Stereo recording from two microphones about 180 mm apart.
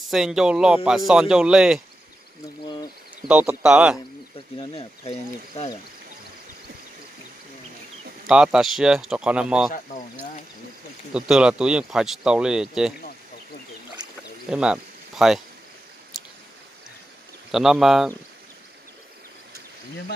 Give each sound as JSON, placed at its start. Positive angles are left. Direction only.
{"t": 0.1, "sound": "speech", "side_deg": -5}
{"t": 3.3, "sound": "speech", "side_deg": -10}
{"t": 4.6, "sound": "speech", "side_deg": 35}
{"t": 8.3, "sound": "speech", "side_deg": -5}
{"t": 11.1, "sound": "speech", "side_deg": -5}
{"t": 14.0, "sound": "a sound", "side_deg": -25}
{"t": 14.5, "sound": "speech", "side_deg": -5}
{"t": 17.5, "sound": "speech", "side_deg": 0}